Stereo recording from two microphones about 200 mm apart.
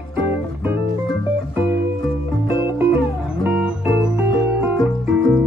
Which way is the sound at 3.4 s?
5° right (ahead or behind).